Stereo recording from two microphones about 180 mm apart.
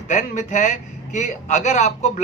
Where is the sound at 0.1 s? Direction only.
40° left (ahead or behind).